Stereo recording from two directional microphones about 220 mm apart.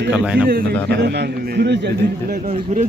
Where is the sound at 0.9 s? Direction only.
50° right (ahead or behind).